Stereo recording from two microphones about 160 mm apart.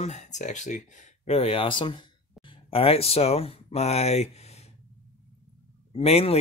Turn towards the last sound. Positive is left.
turn(degrees=40)  # may be behind; listen again after turning